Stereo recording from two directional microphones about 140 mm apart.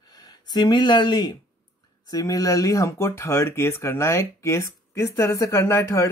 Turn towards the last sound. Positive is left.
turn(degrees=20)  # may be behind; listen again after turning